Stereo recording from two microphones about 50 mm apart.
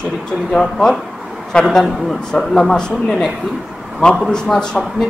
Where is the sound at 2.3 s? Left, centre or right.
Centre.